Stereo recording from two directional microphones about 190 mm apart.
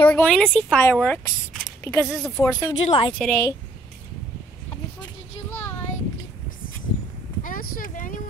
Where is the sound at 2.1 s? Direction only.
Centre (ahead or behind).